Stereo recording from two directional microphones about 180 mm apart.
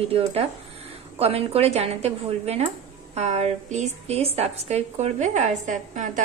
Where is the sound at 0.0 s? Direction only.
35° right (ahead or behind).